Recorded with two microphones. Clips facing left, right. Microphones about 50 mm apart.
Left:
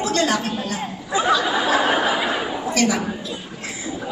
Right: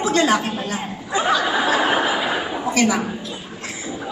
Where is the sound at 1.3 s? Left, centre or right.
Centre.